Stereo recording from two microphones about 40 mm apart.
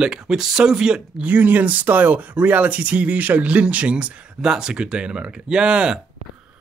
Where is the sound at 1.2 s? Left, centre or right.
Right.